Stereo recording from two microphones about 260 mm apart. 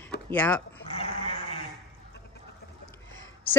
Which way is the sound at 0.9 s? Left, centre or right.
Left.